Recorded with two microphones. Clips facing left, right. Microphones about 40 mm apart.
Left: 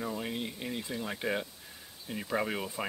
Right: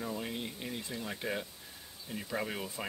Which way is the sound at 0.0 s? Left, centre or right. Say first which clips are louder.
Left 2 dB; centre.